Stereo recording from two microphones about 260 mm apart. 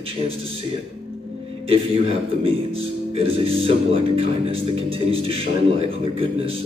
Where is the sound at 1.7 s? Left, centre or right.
Right.